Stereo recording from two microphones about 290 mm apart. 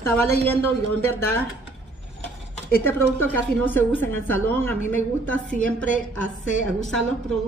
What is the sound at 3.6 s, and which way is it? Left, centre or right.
Speech, centre.